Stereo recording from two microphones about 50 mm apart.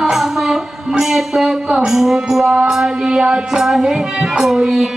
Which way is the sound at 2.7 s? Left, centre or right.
Centre.